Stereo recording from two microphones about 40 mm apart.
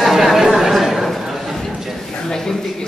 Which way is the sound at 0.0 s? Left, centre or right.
Centre.